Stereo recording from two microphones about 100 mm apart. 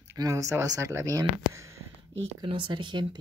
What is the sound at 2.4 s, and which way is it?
Speech, 50° right (ahead or behind).